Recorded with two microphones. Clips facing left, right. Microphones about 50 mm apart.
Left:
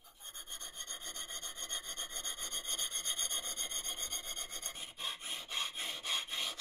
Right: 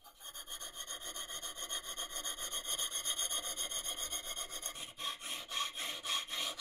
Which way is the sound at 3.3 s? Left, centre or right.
Left.